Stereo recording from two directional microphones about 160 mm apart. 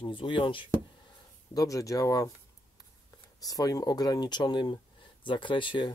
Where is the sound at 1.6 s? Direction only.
20° left (ahead or behind).